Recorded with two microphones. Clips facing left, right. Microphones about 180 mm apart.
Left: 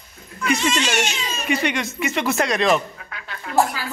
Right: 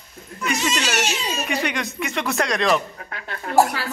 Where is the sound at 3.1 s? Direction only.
40° right (ahead or behind).